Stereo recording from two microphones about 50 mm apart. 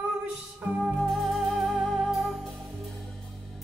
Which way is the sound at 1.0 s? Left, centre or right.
Centre.